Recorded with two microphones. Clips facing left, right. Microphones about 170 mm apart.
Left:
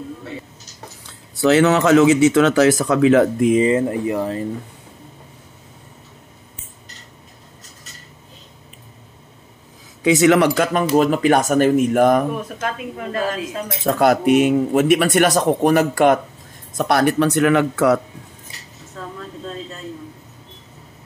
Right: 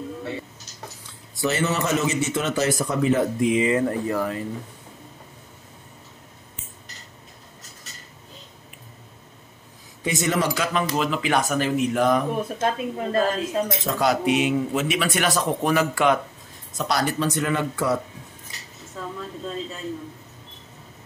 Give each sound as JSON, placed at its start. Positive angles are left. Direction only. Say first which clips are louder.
{"t": 1.4, "sound": "speech", "louder": "left 10 dB", "side_deg": 80}
{"t": 3.3, "sound": "speech", "louder": "left 5 dB", "side_deg": 50}
{"t": 3.6, "sound": "speech", "louder": "left 4 dB", "side_deg": 25}
{"t": 10.0, "sound": "speech", "louder": "left 10 dB", "side_deg": 85}
{"t": 10.5, "sound": "speech", "louder": "left 8 dB", "side_deg": 50}
{"t": 12.5, "sound": "a woman's voice", "louder": "right 2 dB", "side_deg": -30}
{"t": 13.8, "sound": "speech", "louder": "left 9 dB", "side_deg": 55}
{"t": 16.7, "sound": "speech", "louder": "left 8 dB", "side_deg": 55}
{"t": 19.0, "sound": "speech", "louder": "left 1 dB", "side_deg": -5}